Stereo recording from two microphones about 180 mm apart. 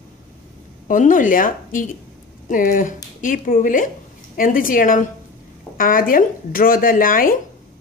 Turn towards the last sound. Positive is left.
turn(degrees=50)  # may be behind; listen again after turning